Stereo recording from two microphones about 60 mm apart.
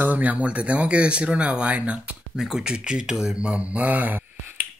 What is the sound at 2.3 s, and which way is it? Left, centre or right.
Speech, centre.